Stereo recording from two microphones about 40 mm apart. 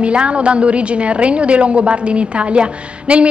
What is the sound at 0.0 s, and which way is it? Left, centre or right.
A woman's voice, right.